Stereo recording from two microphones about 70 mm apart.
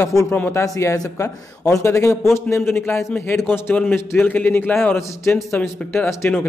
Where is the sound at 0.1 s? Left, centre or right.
Left.